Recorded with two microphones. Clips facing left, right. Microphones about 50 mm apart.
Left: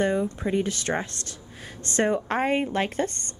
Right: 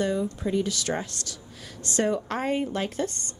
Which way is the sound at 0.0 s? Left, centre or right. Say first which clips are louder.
Left 2 dB; left.